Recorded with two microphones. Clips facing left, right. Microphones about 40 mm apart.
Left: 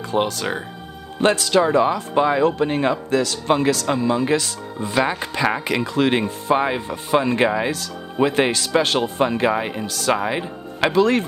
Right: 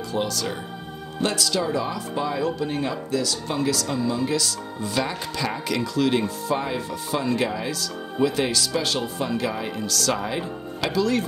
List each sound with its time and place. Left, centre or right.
0.1 s speech: left
9.8 s speech: left
10.8 s speech: left